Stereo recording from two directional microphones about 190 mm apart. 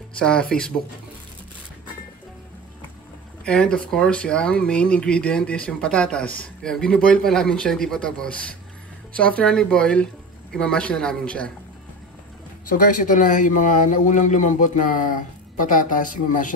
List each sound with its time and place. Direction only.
0.2 s speech: 5° left (ahead or behind)
3.4 s speech: 5° left (ahead or behind)
12.6 s a man's voice: 45° left (ahead or behind)